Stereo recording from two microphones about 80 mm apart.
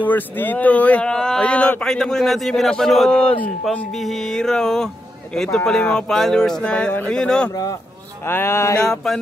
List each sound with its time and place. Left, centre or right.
0.0 s speech: left
8.3 s mantra: left
8.7 s mantra: centre